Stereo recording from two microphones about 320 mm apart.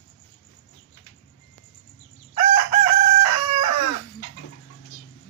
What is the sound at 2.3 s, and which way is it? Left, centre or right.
Chicken, left.